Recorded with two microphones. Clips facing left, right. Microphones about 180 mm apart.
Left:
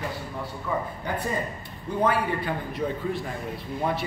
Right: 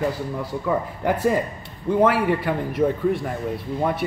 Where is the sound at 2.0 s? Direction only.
85° right.